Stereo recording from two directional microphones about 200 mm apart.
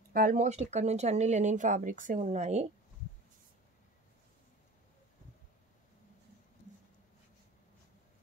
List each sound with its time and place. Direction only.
0.1 s speech: 45° right (ahead or behind)